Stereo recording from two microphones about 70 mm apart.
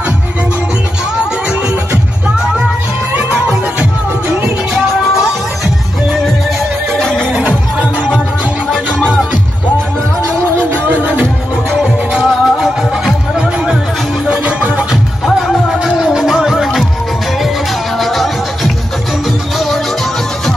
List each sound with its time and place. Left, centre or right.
3.2 s music: centre
7.0 s neigh: centre
7.2 s music: centre
10.7 s music: right
11.8 s music: centre
14.3 s music: centre
15.3 s music: centre
17.9 s music: centre